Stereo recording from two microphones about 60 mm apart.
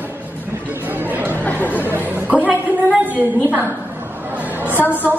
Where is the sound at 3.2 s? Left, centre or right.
Right.